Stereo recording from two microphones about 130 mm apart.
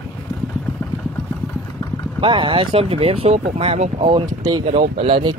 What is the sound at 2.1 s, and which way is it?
Speech, 40° right (ahead or behind).